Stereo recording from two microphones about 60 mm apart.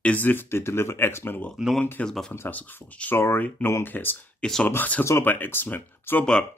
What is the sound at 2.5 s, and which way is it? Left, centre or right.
Speech, left.